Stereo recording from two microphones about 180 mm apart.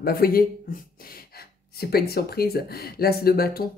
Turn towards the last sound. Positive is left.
turn(degrees=60)  # may be behind; listen again after turning